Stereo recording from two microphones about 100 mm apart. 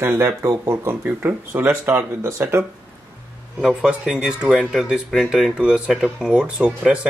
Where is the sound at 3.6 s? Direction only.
10° right (ahead or behind).